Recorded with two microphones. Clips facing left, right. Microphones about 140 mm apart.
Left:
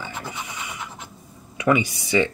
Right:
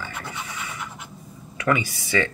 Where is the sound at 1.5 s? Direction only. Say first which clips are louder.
Left 3 dB; 15° left (ahead or behind).